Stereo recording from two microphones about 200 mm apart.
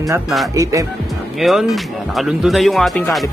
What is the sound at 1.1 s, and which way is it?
Speech, centre (ahead or behind).